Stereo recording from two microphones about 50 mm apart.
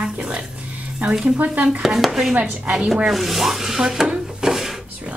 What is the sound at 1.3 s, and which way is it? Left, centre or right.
Speech, right.